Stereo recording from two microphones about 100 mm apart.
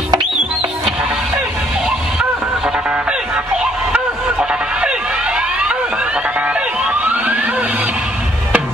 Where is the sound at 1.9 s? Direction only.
5° right (ahead or behind).